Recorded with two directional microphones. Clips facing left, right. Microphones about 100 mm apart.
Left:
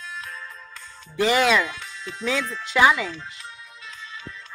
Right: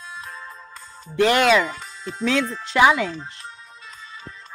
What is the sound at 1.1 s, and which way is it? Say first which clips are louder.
Chopping: right 3 dB; centre (ahead or behind).